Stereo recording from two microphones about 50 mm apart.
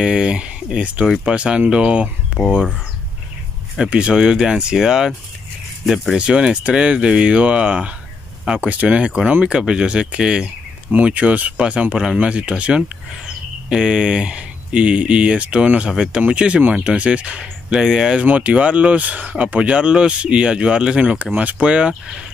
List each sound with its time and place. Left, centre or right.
0.0 s speech: centre
3.7 s speech: centre
6.1 s speech: centre
18.2 s speech: right
21.0 s speech: right